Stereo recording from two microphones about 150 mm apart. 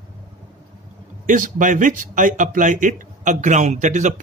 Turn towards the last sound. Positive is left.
turn(degrees=-55)  # may be behind; listen again after turning